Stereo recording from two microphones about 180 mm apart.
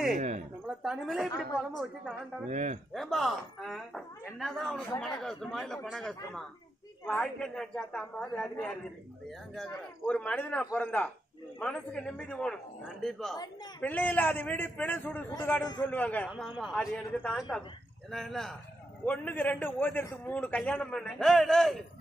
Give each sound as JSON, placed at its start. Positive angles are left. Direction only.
{"t": 0.7, "sound": "speech", "side_deg": 0}
{"t": 2.5, "sound": "speech", "side_deg": -40}
{"t": 2.9, "sound": "speech", "side_deg": 0}
{"t": 9.6, "sound": "a man's voice", "side_deg": 5}